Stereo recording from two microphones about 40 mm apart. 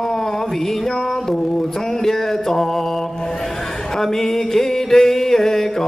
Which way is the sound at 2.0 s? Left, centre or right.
Centre.